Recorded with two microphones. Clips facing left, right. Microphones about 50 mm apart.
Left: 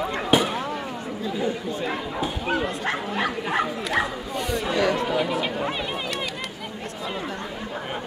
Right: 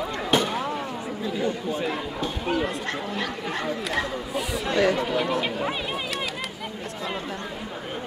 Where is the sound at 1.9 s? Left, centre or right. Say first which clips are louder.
Left 1 dB; centre.